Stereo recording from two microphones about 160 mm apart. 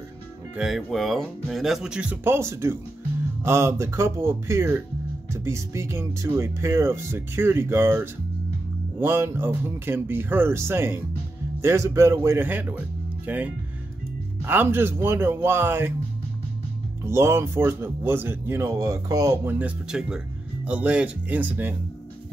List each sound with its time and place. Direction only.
0.6 s speech: 5° right (ahead or behind)
17.0 s speech: 15° right (ahead or behind)
19.6 s speech: 5° right (ahead or behind)